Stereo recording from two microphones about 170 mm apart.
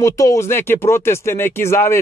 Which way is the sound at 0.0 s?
20° left (ahead or behind).